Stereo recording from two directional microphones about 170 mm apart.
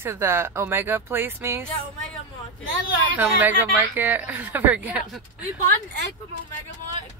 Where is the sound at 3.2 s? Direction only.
10° right (ahead or behind).